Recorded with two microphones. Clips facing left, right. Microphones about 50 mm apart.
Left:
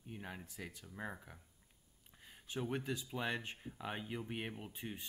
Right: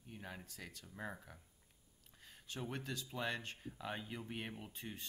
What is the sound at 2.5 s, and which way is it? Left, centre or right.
Speech, centre.